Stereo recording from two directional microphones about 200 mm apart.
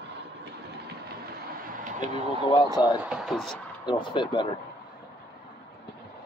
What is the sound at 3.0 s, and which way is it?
Speech, 5° right (ahead or behind).